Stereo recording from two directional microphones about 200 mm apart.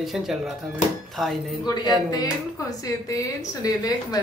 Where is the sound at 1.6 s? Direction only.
20° left (ahead or behind).